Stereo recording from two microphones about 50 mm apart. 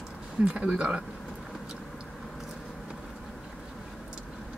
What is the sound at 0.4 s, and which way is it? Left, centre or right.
Speech, centre.